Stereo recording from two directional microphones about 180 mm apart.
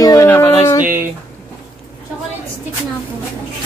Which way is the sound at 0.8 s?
10° right (ahead or behind).